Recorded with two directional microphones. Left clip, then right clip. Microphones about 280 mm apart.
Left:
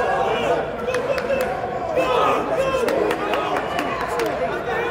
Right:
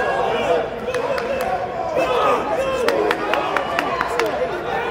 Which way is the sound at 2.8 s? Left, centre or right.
Centre.